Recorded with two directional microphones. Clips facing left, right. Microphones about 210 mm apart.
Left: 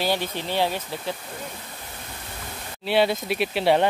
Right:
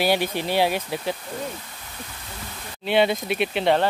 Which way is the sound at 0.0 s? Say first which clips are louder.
Right 4 dB; 10° right (ahead or behind).